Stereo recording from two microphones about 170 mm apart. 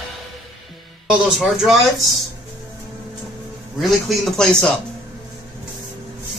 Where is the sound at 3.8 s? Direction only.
Centre (ahead or behind).